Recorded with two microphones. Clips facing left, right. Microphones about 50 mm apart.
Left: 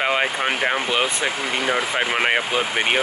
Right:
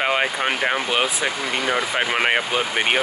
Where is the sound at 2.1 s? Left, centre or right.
Centre.